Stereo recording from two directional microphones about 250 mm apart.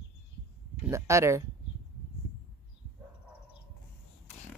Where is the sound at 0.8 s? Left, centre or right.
Centre.